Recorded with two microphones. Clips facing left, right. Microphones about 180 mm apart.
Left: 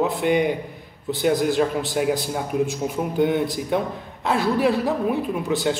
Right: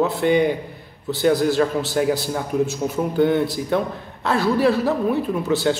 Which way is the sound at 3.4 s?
15° left (ahead or behind).